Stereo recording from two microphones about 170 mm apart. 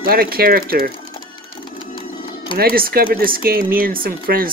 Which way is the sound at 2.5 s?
60° right (ahead or behind).